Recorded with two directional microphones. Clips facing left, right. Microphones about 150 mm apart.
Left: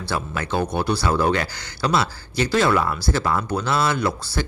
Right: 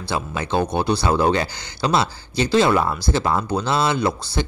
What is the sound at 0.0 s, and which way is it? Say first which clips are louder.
Speech: right 1 dB; 20° right (ahead or behind).